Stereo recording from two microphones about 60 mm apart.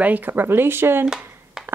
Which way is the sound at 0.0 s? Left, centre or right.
Right.